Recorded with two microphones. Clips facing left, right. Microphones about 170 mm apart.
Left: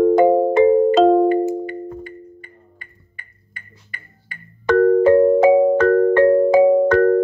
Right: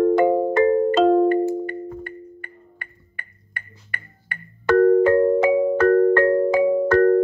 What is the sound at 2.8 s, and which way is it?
Music, 65° right (ahead or behind).